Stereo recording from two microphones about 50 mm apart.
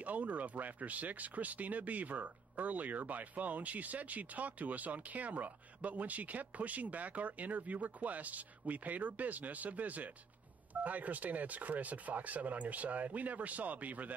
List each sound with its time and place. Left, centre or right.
0.0 s speech: right